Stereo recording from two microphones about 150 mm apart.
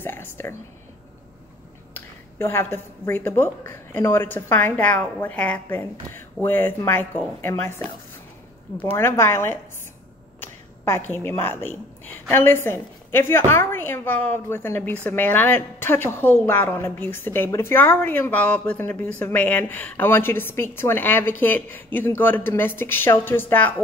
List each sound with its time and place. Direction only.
0.0 s speech: 15° left (ahead or behind)
2.0 s a woman's voice: 15° left (ahead or behind)